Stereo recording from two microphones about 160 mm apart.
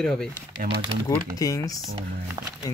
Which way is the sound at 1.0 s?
20° left (ahead or behind).